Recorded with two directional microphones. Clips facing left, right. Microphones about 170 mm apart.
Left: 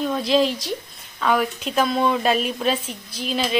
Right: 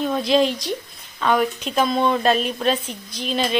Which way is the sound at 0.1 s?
Centre (ahead or behind).